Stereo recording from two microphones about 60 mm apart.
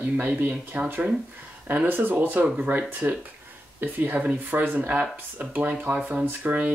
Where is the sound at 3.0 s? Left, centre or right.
Right.